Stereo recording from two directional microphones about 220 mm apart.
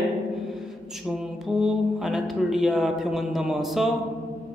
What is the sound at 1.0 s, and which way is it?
A man's voice, centre (ahead or behind).